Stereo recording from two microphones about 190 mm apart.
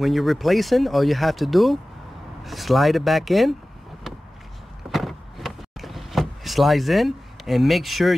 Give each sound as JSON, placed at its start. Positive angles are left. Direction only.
{"t": 0.0, "sound": "speech", "side_deg": 0}
{"t": 4.9, "sound": "power windows", "side_deg": 0}